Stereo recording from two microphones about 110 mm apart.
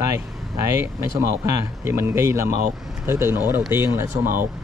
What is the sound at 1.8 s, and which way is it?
Speech, 25° right (ahead or behind).